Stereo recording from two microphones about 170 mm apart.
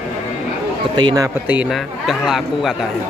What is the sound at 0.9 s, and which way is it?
Speech, 25° right (ahead or behind).